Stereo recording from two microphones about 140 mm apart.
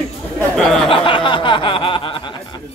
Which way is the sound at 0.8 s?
40° left (ahead or behind).